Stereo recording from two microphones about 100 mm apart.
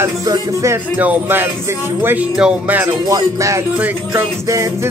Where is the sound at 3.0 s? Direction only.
35° right (ahead or behind).